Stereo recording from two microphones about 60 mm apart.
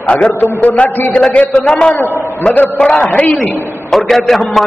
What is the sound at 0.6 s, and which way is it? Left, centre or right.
Speech, left.